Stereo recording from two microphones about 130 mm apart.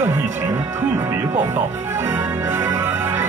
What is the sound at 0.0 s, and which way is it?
Music, 20° right (ahead or behind).